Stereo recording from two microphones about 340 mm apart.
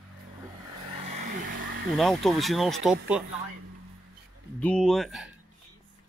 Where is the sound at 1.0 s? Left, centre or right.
Centre.